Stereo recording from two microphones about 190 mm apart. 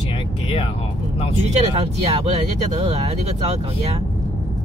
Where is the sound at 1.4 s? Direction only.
35° right (ahead or behind).